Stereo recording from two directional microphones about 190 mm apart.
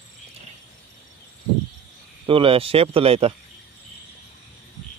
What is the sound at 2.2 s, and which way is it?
Speech, 30° right (ahead or behind).